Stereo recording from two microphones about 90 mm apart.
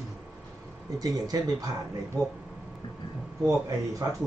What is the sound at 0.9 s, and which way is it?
Speech, 40° right (ahead or behind).